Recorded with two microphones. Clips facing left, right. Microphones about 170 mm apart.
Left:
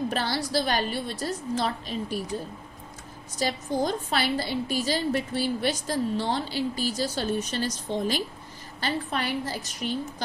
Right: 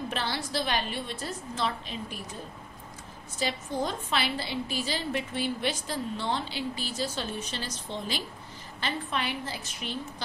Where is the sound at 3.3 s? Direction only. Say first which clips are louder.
Left 4 dB; 40° left (ahead or behind).